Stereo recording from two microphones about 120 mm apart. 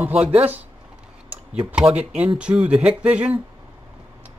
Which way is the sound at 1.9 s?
60° right (ahead or behind).